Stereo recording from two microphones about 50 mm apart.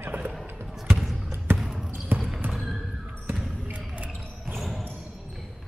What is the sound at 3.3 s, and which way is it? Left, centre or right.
Basketball bounce, right.